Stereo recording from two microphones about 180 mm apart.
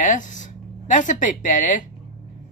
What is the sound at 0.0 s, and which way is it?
Speech, 45° left (ahead or behind).